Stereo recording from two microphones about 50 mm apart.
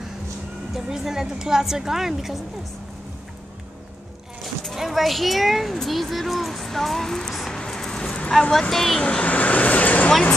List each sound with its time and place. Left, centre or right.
0.7 s a woman's voice: centre
4.4 s speech: centre
8.3 s speech: centre
9.2 s vehicle: left